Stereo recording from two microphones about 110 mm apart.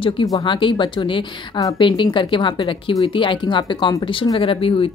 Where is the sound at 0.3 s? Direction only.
45° left (ahead or behind).